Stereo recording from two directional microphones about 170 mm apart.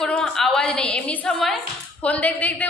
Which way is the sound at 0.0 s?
Centre (ahead or behind).